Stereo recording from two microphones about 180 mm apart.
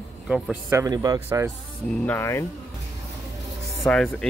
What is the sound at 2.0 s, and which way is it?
Speech, 10° left (ahead or behind).